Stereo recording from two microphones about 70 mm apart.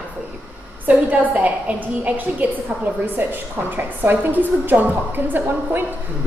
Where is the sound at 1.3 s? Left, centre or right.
Right.